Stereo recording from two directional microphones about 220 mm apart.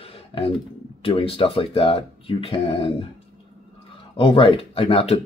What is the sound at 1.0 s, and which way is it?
Speech, 25° left (ahead or behind).